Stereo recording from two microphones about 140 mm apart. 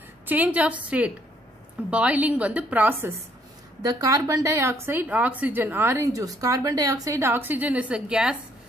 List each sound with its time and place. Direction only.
0.3 s a woman's voice: 10° right (ahead or behind)
3.8 s a woman's voice: 25° right (ahead or behind); by 8.4 s 5° right (ahead or behind)